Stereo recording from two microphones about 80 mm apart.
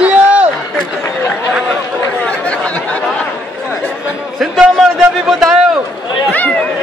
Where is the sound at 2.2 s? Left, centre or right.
Centre.